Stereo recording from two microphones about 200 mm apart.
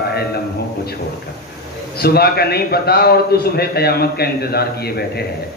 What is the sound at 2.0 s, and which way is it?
A man's voice, 50° left (ahead or behind).